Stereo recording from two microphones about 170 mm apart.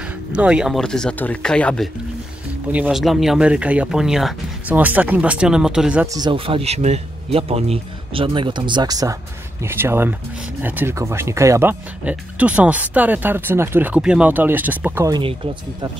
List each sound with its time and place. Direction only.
0.0 s speech: 5° right (ahead or behind)
2.7 s speech: 5° right (ahead or behind)
6.0 s speech: 25° right (ahead or behind)